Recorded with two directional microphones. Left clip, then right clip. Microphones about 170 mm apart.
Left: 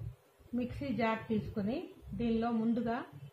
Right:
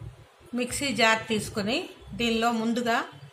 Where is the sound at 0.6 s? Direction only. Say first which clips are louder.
Right 11 dB; 15° right (ahead or behind).